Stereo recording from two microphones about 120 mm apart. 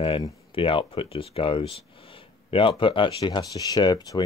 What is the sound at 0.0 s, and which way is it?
Speech, 45° left (ahead or behind).